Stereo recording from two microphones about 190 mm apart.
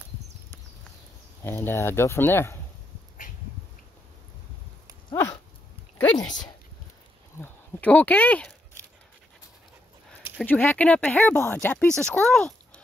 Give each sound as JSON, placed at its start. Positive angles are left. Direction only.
{"t": 1.4, "sound": "speech", "side_deg": 10}
{"t": 6.1, "sound": "speech", "side_deg": 20}
{"t": 7.3, "sound": "a sound", "side_deg": 10}
{"t": 10.4, "sound": "speech", "side_deg": 10}